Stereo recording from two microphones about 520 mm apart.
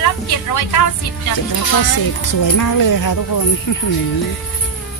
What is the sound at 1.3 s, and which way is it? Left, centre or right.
Speech, left.